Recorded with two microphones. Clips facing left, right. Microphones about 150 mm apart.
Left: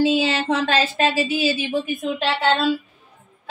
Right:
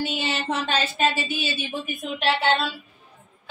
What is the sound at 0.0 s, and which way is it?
Speech, 90° left.